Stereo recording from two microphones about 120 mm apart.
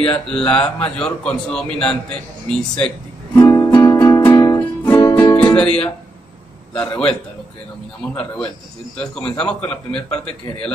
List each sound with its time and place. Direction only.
0.0 s a man's voice: 5° left (ahead or behind)
3.4 s music: 30° left (ahead or behind)
5.3 s music: 10° left (ahead or behind)
8.0 s a man's voice: 10° left (ahead or behind)